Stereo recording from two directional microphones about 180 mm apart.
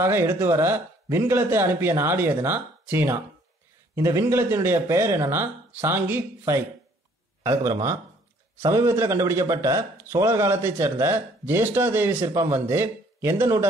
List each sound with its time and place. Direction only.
0.0 s speech: 15° right (ahead or behind)